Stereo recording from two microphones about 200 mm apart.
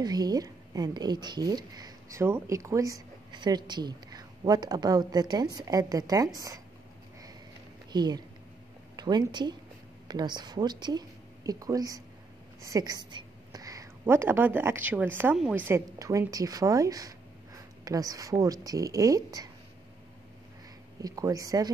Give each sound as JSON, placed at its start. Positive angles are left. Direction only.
{"t": 0.0, "sound": "a woman's voice", "side_deg": -20}
{"t": 7.9, "sound": "a woman's voice", "side_deg": -20}
{"t": 21.0, "sound": "a woman's voice", "side_deg": -20}